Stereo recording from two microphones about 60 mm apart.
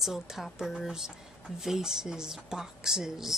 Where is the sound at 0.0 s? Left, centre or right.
Centre.